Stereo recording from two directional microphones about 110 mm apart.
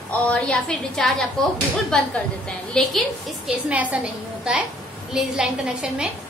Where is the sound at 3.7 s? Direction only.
10° right (ahead or behind).